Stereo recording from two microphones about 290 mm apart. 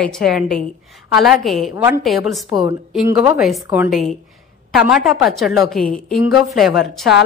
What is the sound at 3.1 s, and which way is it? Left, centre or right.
Speech, centre.